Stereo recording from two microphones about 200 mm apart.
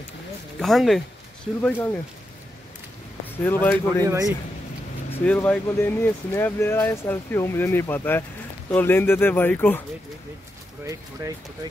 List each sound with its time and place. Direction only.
0.6 s speech: centre (ahead or behind)
3.4 s speech: 10° left (ahead or behind)
4.0 s speech: 15° right (ahead or behind)
5.2 s speech: 10° left (ahead or behind)
10.9 s speech: 15° right (ahead or behind)